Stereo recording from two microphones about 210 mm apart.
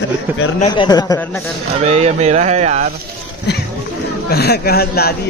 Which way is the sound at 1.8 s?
30° right (ahead or behind).